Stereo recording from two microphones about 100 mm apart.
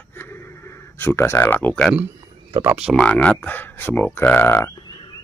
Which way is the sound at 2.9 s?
10° left (ahead or behind).